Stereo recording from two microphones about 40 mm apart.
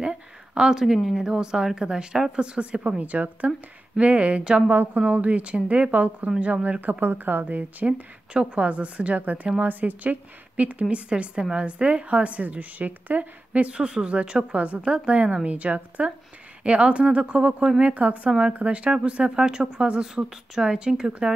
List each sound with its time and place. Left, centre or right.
0.0 s a sound: centre
0.9 s a woman's voice: centre
1.2 s a woman's voice: centre
3.0 s a woman's voice: right
6.8 s speech: right
8.3 s a woman's voice: right
13.5 s a woman's voice: right